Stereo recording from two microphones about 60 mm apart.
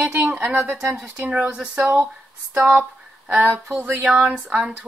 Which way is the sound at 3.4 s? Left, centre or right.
Right.